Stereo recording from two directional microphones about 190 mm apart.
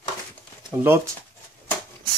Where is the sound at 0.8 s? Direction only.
10° right (ahead or behind).